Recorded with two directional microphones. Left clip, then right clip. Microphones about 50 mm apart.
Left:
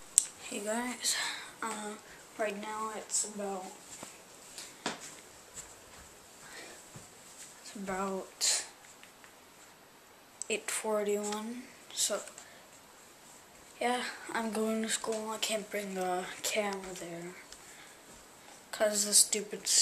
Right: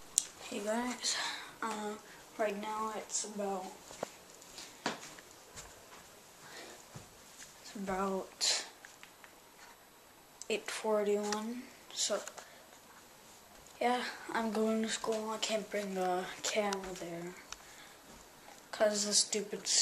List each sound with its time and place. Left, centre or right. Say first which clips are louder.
0.1 s speech: left 3 dB; centre
7.6 s speech: even; centre
8.4 s a sound: left 1 dB; right
10.4 s speech: left 1 dB; centre
13.7 s speech: even; centre
18.7 s speech: left 1 dB; centre